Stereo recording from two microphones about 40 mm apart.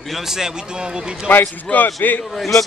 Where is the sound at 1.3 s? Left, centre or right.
Left.